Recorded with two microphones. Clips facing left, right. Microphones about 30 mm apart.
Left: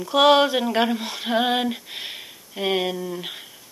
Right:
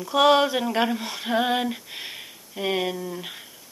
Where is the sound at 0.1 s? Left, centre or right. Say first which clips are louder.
Left 2 dB; left.